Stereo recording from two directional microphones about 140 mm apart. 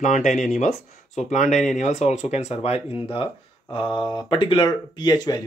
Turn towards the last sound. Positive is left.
turn(degrees=30)  # may be behind; listen again after turning